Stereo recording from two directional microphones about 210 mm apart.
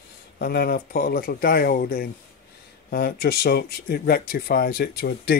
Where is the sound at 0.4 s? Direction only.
45° left (ahead or behind).